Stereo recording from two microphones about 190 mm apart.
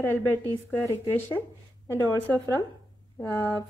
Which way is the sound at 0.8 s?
10° left (ahead or behind).